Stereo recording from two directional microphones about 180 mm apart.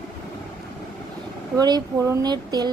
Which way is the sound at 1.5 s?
20° right (ahead or behind).